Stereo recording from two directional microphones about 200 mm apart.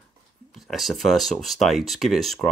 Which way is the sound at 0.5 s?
Centre (ahead or behind).